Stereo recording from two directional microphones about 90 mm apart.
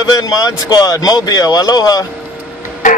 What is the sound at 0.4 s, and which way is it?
Speech, 45° left (ahead or behind).